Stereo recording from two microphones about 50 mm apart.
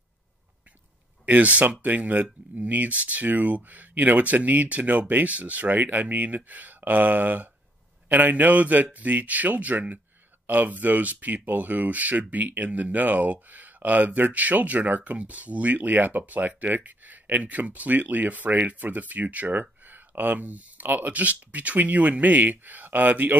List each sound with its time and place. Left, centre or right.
1.2 s speech: right